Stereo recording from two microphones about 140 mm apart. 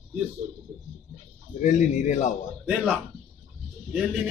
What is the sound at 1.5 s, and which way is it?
Speech, 60° left (ahead or behind).